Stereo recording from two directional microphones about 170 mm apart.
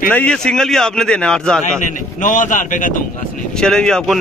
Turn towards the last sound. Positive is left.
turn(degrees=5)  # may be behind; listen again after turning